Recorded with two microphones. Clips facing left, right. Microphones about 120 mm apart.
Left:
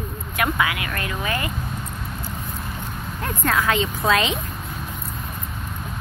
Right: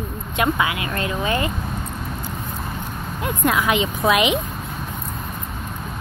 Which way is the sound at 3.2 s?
15° right (ahead or behind).